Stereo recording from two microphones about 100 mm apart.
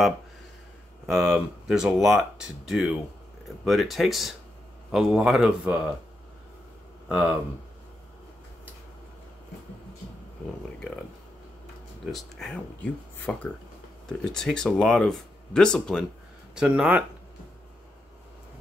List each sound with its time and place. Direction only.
1.0 s speech: 5° left (ahead or behind)
7.1 s speech: 10° right (ahead or behind)
12.1 s speech: 5° left (ahead or behind)
12.8 s speech: 15° left (ahead or behind)
16.5 s speech: 10° right (ahead or behind)